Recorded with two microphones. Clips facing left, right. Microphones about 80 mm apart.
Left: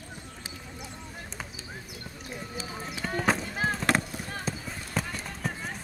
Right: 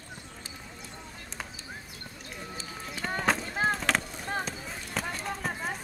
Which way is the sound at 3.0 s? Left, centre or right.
Centre.